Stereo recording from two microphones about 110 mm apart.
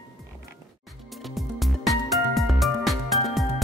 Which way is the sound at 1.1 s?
Centre (ahead or behind).